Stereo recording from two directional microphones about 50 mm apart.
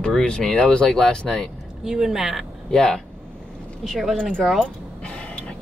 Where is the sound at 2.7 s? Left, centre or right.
Centre.